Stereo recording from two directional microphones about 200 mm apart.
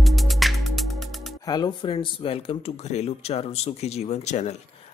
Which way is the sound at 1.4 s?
20° left (ahead or behind).